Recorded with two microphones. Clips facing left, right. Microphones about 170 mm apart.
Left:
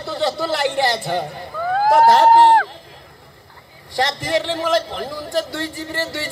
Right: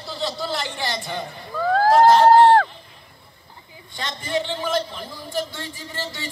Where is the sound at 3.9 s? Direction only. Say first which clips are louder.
Left 6 dB; 85° left.